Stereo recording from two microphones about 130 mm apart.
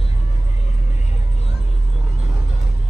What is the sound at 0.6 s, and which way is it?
Vehicle, 60° left (ahead or behind).